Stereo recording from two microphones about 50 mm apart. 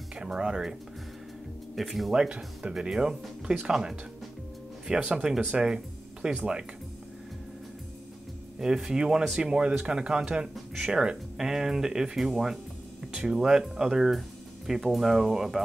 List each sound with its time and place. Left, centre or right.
0.1 s speech: centre
1.8 s speech: centre
2.1 s speech: centre
8.5 s speech: centre
10.5 s speech: centre
10.9 s speech: centre